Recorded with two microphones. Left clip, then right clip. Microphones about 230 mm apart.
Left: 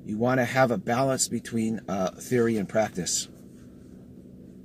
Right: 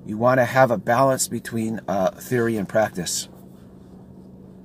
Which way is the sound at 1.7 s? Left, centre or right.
Right.